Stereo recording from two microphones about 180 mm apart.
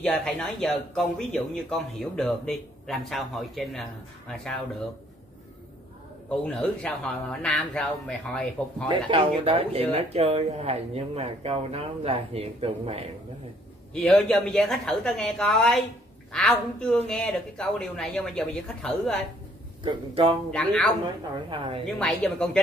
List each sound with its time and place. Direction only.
0.0 s speech: 5° left (ahead or behind)
6.4 s speech: 5° left (ahead or behind)
8.8 s speech: 25° right (ahead or behind)
13.9 s speech: 5° left (ahead or behind)
19.8 s speech: 25° right (ahead or behind)
20.5 s speech: 5° left (ahead or behind)
21.0 s speech: 25° right (ahead or behind)
21.8 s speech: centre (ahead or behind)